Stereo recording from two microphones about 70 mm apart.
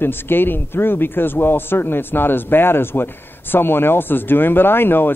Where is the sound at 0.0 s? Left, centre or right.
Left.